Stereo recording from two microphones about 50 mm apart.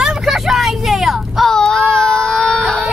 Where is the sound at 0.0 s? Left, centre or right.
Centre.